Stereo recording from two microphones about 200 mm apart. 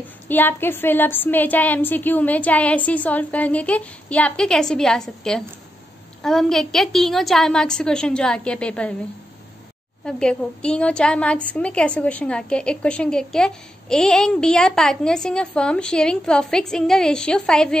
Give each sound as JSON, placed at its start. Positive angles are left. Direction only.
{"t": 0.0, "sound": "a woman's voice", "side_deg": 10}
{"t": 10.0, "sound": "a woman's voice", "side_deg": 5}